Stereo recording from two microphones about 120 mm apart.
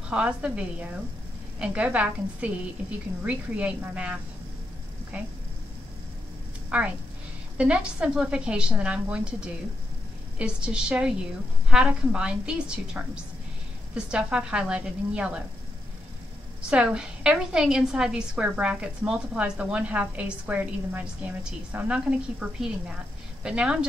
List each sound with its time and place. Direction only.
0.1 s a woman's voice: 10° right (ahead or behind)
6.7 s a woman's voice: 10° right (ahead or behind)
16.7 s a woman's voice: 5° right (ahead or behind)